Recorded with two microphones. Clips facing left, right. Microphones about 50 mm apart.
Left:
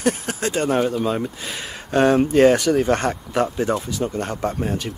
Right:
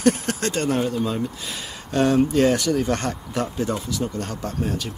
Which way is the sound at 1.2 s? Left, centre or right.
Left.